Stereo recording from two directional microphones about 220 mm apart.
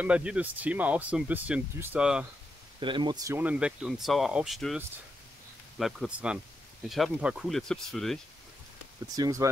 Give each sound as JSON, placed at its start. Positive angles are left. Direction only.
{"t": 0.0, "sound": "speech", "side_deg": -5}
{"t": 2.8, "sound": "speech", "side_deg": -20}
{"t": 9.0, "sound": "speech", "side_deg": -15}